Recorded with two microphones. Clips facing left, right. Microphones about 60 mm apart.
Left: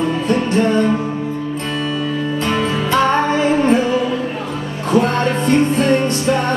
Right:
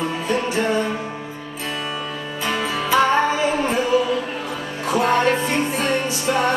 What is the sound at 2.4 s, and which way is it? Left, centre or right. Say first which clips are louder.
Music: left 2 dB; centre.